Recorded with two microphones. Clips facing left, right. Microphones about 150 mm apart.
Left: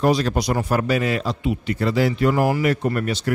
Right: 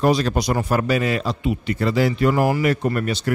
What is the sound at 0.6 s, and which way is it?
Speech, 20° right (ahead or behind).